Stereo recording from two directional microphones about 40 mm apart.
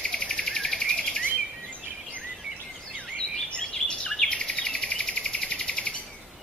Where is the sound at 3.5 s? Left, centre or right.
Left.